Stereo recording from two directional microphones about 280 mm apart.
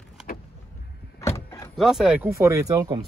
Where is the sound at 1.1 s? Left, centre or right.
Centre.